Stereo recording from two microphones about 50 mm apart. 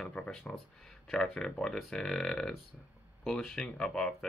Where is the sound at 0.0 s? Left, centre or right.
Centre.